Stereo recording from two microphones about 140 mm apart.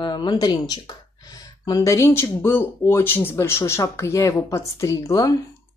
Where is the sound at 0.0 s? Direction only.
30° left (ahead or behind).